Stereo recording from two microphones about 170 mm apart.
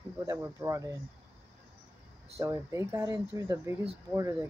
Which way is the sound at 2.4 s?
15° right (ahead or behind).